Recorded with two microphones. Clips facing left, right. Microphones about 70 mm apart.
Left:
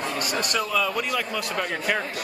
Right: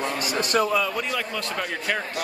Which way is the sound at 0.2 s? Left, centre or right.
Left.